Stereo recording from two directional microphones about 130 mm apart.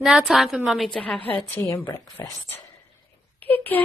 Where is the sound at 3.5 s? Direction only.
15° left (ahead or behind).